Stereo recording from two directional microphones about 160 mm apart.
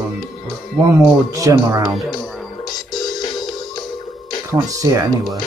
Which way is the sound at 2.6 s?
25° left (ahead or behind).